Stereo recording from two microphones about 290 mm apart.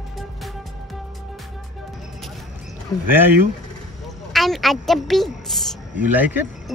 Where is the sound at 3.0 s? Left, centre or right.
Centre.